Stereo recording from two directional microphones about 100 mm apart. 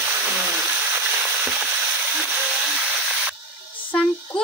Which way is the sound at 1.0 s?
15° right (ahead or behind).